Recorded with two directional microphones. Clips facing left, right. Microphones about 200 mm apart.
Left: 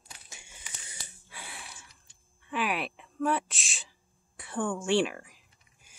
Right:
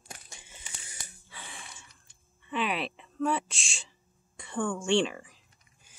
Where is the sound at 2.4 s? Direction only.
5° left (ahead or behind).